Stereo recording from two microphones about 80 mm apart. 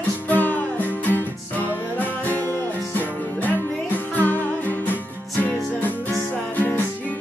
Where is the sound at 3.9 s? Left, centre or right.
Left.